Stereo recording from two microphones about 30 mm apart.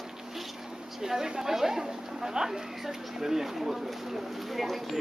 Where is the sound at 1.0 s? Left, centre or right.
Centre.